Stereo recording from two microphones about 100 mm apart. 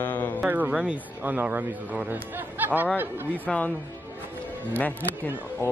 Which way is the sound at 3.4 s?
15° left (ahead or behind).